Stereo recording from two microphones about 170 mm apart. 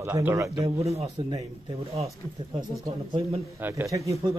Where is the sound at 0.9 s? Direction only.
40° right (ahead or behind).